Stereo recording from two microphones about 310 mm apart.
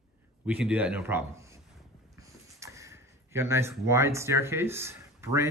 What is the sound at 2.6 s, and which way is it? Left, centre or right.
Speech, centre.